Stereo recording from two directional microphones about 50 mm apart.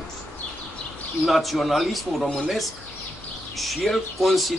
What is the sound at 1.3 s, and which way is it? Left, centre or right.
Speech, centre.